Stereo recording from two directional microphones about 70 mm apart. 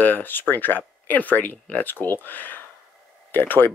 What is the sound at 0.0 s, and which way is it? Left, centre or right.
Speech, left.